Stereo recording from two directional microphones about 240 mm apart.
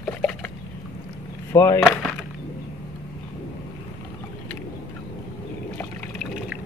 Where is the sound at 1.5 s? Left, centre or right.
Centre.